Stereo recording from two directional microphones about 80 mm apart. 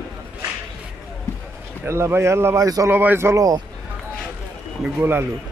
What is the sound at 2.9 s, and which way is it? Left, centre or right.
Speech, right.